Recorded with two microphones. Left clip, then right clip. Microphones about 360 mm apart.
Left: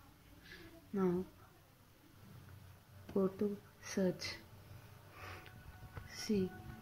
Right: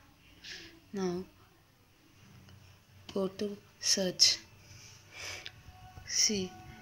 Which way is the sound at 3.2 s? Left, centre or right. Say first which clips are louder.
Right 2 dB; centre.